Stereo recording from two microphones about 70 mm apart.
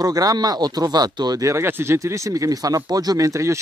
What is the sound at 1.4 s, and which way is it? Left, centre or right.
Speech, right.